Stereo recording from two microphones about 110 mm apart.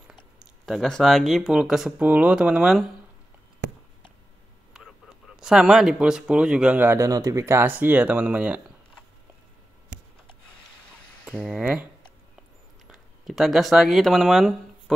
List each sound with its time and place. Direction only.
0.7 s speech: 5° left (ahead or behind)
4.7 s speech: 5° right (ahead or behind)
7.0 s speech: 35° right (ahead or behind); by 8.5 s 10° right (ahead or behind)
11.2 s speech: 10° right (ahead or behind)
12.8 s speech: centre (ahead or behind)